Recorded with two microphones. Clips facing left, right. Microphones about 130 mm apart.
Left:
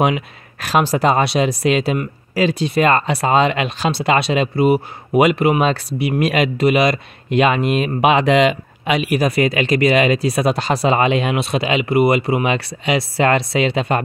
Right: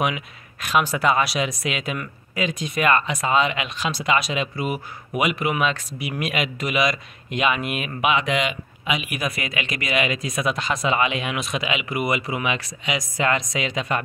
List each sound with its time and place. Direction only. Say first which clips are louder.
0.7 s speech: left 5 dB; 35° left (ahead or behind)